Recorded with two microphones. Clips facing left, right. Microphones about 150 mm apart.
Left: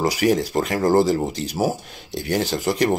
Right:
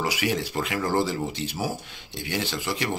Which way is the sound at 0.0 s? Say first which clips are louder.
Left 7 dB; 40° left (ahead or behind).